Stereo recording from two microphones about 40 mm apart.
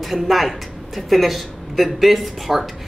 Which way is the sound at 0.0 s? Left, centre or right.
Centre.